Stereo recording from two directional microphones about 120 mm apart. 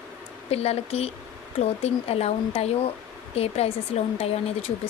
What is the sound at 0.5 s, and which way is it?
Speech, 60° left (ahead or behind).